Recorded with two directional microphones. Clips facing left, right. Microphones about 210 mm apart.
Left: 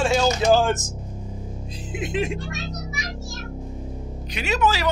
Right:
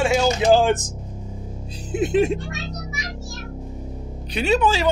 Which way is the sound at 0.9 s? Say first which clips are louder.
Even; centre (ahead or behind).